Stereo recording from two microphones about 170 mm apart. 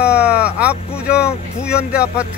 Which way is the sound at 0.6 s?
5° right (ahead or behind).